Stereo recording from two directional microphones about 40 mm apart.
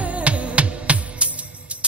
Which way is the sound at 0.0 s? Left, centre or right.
Right.